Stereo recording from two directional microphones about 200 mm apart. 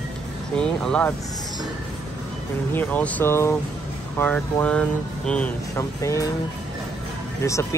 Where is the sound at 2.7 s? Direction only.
10° left (ahead or behind).